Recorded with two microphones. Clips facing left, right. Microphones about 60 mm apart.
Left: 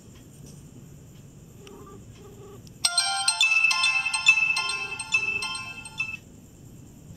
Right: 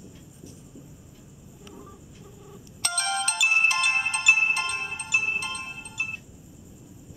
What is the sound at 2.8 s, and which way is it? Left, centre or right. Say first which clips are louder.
Ringtone: right 1 dB; centre.